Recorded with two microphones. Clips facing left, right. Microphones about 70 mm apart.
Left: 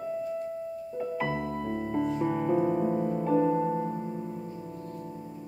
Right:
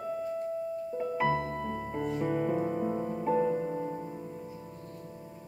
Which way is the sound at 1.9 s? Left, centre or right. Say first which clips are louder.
Left 4 dB; centre.